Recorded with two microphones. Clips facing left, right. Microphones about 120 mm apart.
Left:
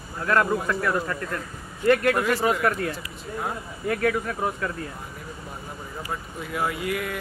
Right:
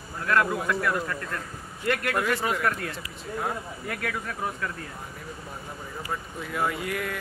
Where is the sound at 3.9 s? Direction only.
35° left (ahead or behind).